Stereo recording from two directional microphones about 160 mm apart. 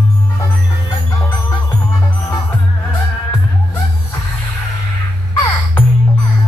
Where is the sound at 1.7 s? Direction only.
25° left (ahead or behind).